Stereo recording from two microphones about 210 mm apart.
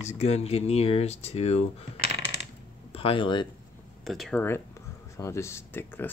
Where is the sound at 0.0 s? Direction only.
30° left (ahead or behind).